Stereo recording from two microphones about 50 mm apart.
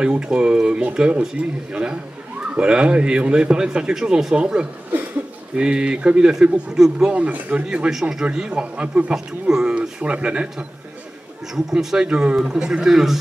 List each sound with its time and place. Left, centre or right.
0.0 s a man's voice: centre
7.2 s a man's voice: right
9.1 s a man's voice: centre
9.8 s speech: right
11.5 s a man's voice: centre